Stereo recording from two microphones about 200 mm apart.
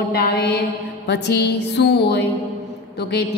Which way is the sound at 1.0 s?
60° left (ahead or behind).